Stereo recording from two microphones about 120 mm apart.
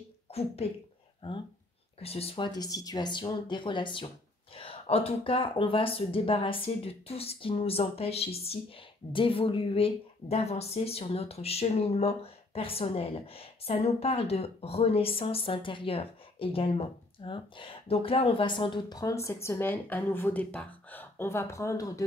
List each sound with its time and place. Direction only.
0.3 s speech: 55° left (ahead or behind)
1.2 s a woman's voice: 45° left (ahead or behind)
2.0 s speech: 55° left (ahead or behind)
4.6 s a woman's voice: 55° left (ahead or behind); by 22.0 s 30° left (ahead or behind)